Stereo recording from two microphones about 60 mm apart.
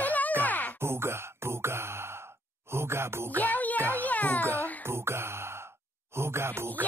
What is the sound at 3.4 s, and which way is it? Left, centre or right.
Music, left.